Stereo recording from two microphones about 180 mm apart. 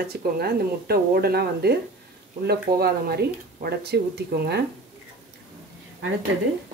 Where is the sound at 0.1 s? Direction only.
60° right (ahead or behind).